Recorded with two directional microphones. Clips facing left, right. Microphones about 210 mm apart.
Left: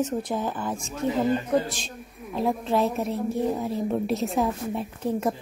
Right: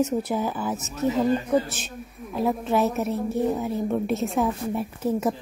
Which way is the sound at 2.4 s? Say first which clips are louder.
Right 1 dB; 5° right (ahead or behind).